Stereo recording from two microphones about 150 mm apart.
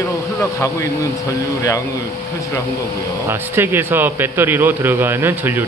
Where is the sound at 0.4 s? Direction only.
20° left (ahead or behind).